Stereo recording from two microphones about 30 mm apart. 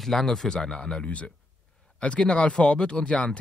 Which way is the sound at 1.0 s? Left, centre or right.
Left.